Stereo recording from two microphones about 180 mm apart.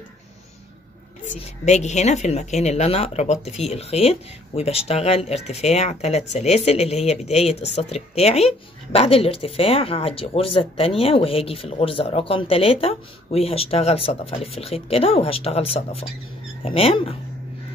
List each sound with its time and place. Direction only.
1.7 s speech: 40° left (ahead or behind)